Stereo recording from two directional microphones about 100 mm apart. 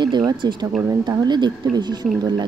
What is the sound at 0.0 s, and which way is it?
Speech, 45° right (ahead or behind).